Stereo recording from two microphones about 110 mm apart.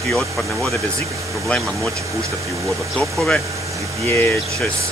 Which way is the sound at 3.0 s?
5° left (ahead or behind).